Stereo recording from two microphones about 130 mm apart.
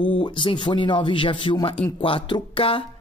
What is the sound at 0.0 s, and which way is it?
Speech, 40° left (ahead or behind).